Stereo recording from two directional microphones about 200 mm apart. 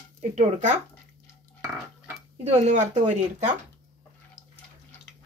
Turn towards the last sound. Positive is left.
turn(degrees=-35)  # may be behind; listen again after turning